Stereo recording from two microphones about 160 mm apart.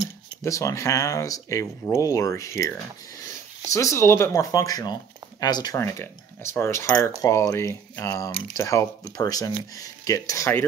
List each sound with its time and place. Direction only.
0.4 s speech: 20° left (ahead or behind)